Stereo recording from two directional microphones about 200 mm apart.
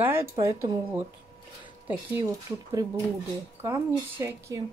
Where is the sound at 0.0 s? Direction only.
10° right (ahead or behind).